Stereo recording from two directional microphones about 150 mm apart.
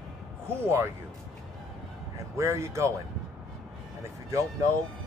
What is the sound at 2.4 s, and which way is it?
Speech, 20° right (ahead or behind).